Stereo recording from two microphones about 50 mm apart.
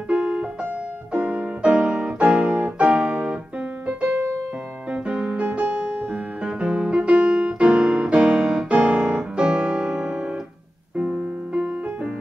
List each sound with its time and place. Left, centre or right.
0.1 s music: right
2.1 s keyboard: right
4.9 s music: right